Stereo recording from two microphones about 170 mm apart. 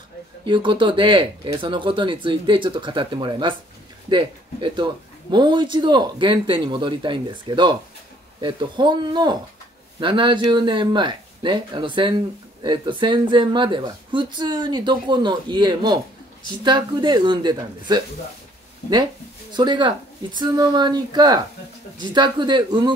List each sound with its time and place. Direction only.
0.5 s speech: 30° right (ahead or behind)
19.5 s speech: 25° right (ahead or behind)